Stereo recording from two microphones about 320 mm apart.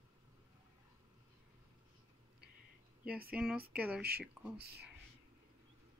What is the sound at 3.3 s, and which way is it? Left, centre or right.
Speech, centre.